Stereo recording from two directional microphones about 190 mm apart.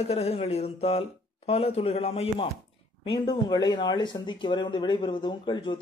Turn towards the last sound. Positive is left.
turn(degrees=25)  # may be behind; listen again after turning